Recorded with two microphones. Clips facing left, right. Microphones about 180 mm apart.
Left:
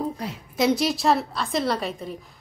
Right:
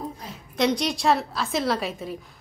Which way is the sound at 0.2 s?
70° left (ahead or behind).